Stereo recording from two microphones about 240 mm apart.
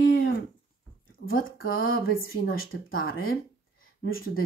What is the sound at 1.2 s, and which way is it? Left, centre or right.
Speech, left.